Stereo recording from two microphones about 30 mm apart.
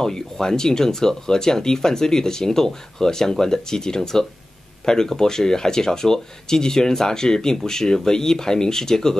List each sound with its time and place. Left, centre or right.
0.0 s speech: centre